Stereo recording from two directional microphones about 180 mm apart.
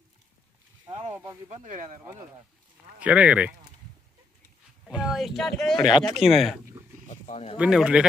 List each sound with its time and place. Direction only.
1.1 s speech: 15° right (ahead or behind)
1.5 s speech: 45° right (ahead or behind)
3.0 s speech: 5° right (ahead or behind)
4.8 s speech: 5° right (ahead or behind)
5.8 s speech: 25° left (ahead or behind)
6.1 s speech: centre (ahead or behind)
7.1 s a sound: 35° left (ahead or behind)
7.5 s speech: 5° right (ahead or behind)